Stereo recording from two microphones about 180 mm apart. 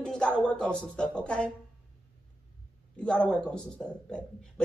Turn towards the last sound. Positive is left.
turn(degrees=5)  # may be behind; listen again after turning